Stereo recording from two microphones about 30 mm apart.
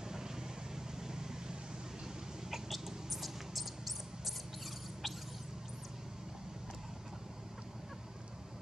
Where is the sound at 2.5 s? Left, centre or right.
Centre.